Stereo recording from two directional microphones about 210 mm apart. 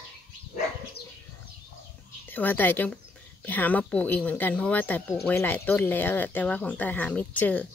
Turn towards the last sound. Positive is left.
turn(degrees=5)  # may be behind; listen again after turning